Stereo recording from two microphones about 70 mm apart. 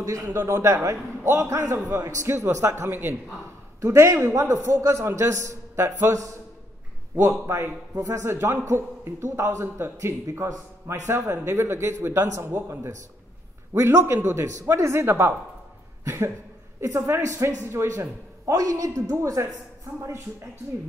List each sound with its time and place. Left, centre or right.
0.0 s a man's voice: right
16.0 s a sound: right
16.8 s a man's voice: right